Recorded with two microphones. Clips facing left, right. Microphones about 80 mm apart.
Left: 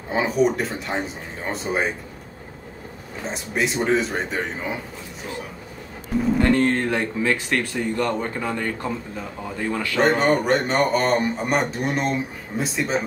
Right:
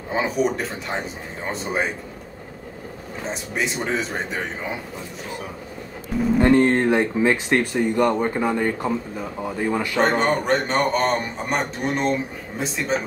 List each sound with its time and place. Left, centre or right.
0.1 s a man's voice: centre
3.3 s a man's voice: centre
6.4 s speech: centre
9.9 s a man's voice: centre